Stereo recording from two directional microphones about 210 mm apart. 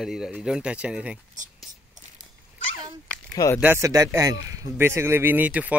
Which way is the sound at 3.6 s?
10° right (ahead or behind).